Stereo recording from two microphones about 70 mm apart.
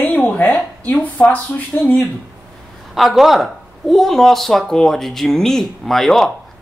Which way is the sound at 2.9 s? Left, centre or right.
Centre.